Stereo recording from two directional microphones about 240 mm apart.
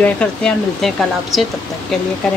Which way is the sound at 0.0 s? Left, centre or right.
Centre.